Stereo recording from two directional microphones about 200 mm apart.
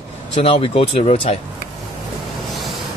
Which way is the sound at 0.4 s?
30° left (ahead or behind).